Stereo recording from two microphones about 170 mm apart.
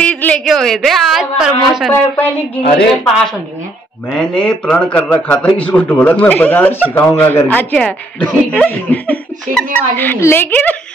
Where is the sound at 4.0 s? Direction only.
5° left (ahead or behind).